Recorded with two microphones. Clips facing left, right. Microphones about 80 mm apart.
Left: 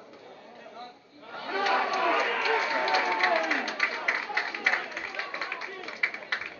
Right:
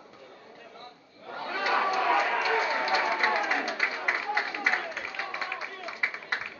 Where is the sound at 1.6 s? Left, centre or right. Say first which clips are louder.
Right 1 dB; right.